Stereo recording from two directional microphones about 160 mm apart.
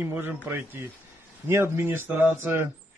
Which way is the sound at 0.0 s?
10° right (ahead or behind).